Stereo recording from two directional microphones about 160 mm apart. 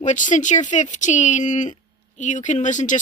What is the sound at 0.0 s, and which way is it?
Speech, 50° left (ahead or behind).